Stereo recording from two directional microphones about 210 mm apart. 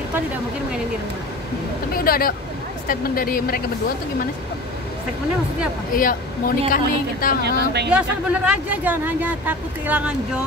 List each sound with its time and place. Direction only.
2.0 s speech: 45° left (ahead or behind)
5.9 s a woman's voice: 40° left (ahead or behind)
7.4 s speech: 50° right (ahead or behind)
7.9 s speech: 5° right (ahead or behind)